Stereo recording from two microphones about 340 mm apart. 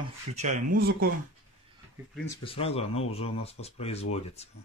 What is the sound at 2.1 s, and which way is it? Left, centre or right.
Speech, centre.